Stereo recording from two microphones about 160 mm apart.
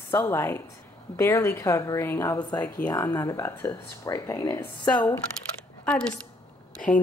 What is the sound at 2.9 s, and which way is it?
Speech, 20° left (ahead or behind).